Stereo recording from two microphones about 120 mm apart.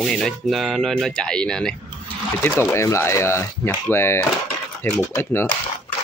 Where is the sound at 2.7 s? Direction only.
25° left (ahead or behind).